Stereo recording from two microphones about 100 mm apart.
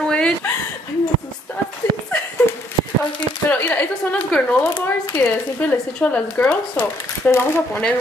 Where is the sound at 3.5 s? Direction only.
15° left (ahead or behind).